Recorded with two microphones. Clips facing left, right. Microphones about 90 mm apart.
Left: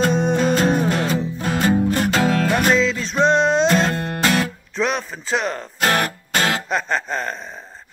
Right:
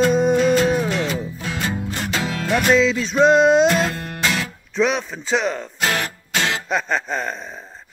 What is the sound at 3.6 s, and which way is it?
Music, 40° left (ahead or behind).